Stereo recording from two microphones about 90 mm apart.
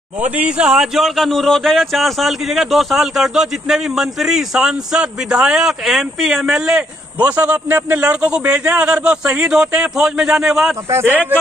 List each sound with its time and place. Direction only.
0.2 s speech: 10° right (ahead or behind)
10.9 s speech: 30° right (ahead or behind)